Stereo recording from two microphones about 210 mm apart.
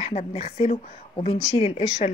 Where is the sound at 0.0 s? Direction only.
30° left (ahead or behind).